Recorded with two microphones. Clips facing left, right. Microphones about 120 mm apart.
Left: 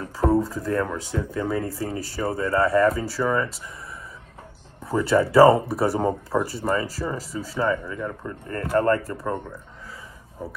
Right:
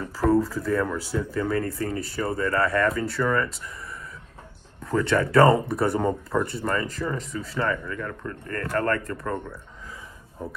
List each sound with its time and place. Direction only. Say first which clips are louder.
0.3 s speech: right 2 dB; centre (ahead or behind)
5.0 s speech: left 4 dB; 5° left (ahead or behind)
7.7 s speech: left 3 dB; 15° left (ahead or behind)
9.2 s speech: left 2 dB; 10° left (ahead or behind)